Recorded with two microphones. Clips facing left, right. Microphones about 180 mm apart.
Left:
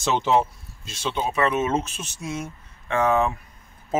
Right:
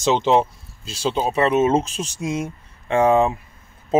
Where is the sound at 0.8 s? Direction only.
35° right (ahead or behind).